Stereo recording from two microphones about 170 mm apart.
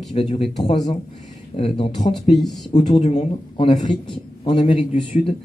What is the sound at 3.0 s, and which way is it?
Speech, 40° left (ahead or behind).